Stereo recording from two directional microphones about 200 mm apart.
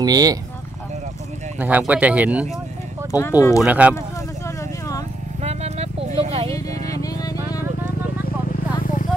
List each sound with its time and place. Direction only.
0.0 s speech: 20° right (ahead or behind)
1.6 s speech: 10° right (ahead or behind)
3.1 s speech: 15° left (ahead or behind)
3.6 s speech: 5° right (ahead or behind)
4.5 s vehicle: 15° left (ahead or behind)
5.4 s vehicle: 30° right (ahead or behind)
6.9 s vehicle: 15° left (ahead or behind)